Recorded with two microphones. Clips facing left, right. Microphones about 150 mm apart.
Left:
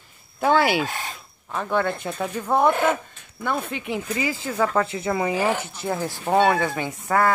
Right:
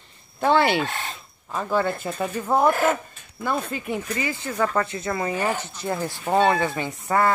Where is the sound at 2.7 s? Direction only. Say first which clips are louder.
Even; 20° left (ahead or behind).